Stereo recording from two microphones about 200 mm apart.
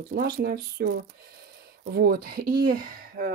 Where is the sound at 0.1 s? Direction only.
50° right (ahead or behind).